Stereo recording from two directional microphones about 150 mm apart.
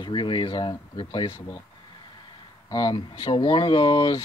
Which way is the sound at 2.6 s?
25° left (ahead or behind).